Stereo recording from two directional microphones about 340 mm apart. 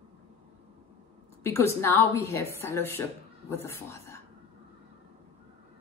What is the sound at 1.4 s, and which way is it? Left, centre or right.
A woman's voice, centre.